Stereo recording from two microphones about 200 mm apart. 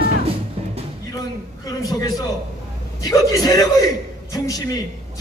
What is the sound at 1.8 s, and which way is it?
A man's voice, 20° left (ahead or behind).